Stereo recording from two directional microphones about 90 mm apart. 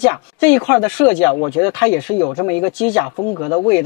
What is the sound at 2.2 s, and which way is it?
Speech, 35° left (ahead or behind).